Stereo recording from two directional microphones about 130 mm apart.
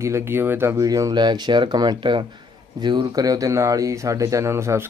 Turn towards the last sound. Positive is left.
turn(degrees=-20)  # may be behind; listen again after turning